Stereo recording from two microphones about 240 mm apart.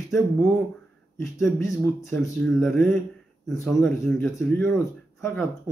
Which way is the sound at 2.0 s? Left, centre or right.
Centre.